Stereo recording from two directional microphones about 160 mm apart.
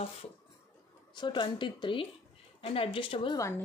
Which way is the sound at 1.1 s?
30° left (ahead or behind).